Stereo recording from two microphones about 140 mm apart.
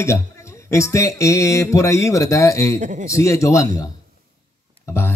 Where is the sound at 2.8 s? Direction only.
60° right (ahead or behind).